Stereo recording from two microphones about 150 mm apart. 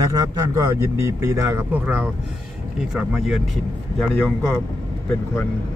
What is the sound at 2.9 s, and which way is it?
Speech, 5° right (ahead or behind).